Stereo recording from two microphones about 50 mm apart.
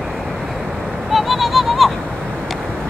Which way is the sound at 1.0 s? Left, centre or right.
Centre.